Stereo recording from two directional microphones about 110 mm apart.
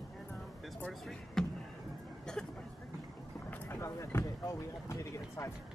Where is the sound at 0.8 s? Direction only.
5° left (ahead or behind).